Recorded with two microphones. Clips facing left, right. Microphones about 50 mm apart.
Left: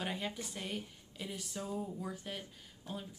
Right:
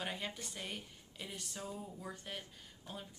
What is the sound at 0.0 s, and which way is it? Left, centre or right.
A woman's voice, centre.